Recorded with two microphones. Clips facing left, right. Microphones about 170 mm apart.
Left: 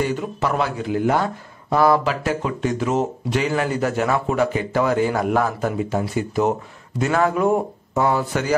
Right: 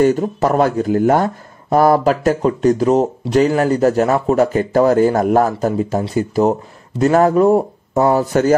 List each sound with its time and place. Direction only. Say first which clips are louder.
0.0 s speech: right 8 dB; 40° right (ahead or behind)